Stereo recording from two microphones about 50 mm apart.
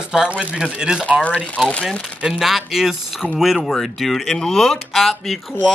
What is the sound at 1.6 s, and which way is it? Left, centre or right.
Speech, centre.